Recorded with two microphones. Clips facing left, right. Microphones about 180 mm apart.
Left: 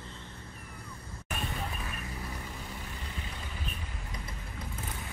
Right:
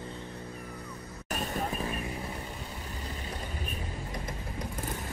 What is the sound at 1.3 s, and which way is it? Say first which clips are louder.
Vehicle: right 4 dB; 40° right (ahead or behind).